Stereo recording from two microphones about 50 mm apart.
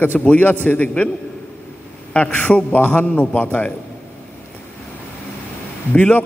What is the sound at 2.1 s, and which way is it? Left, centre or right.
A man's voice, left.